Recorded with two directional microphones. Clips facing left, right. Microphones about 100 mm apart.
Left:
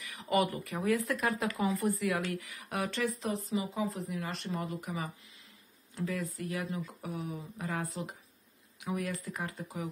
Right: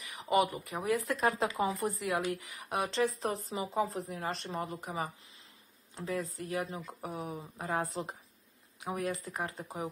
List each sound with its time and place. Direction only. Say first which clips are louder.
0.0 s a woman's voice: right 1 dB; 20° right (ahead or behind)
3.2 s a woman's voice: left 1 dB; 40° right (ahead or behind)